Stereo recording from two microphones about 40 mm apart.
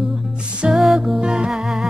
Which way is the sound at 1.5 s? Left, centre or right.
Centre.